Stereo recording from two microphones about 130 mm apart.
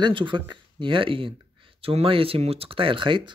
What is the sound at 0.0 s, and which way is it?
Speech, 40° right (ahead or behind).